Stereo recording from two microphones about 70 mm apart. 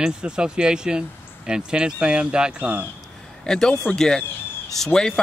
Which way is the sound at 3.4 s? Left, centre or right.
Centre.